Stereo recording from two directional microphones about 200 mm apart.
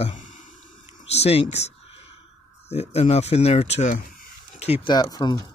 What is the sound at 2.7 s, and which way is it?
Speech, 30° left (ahead or behind).